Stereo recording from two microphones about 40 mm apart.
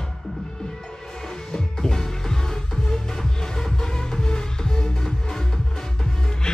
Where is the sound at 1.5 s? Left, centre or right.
Centre.